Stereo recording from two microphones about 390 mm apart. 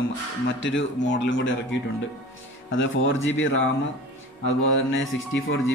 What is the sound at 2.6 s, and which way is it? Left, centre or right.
Speech, left.